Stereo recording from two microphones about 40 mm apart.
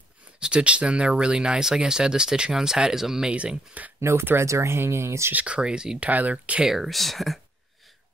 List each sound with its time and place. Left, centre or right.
0.4 s speech: right
3.3 s speech: right
3.8 s speech: right
4.2 s speech: right
5.3 s speech: right
5.6 s speech: right
6.0 s speech: right
6.7 s speech: centre